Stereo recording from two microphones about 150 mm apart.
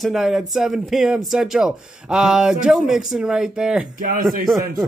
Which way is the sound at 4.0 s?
70° right (ahead or behind).